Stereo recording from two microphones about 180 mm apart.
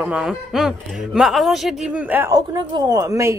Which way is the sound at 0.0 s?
5° right (ahead or behind).